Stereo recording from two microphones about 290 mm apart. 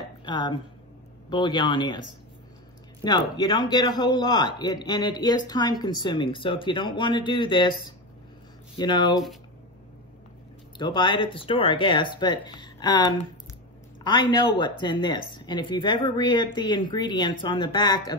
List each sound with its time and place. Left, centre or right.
0.2 s a man's voice: centre
3.0 s a man's voice: centre
8.7 s a man's voice: centre
10.8 s a man's voice: centre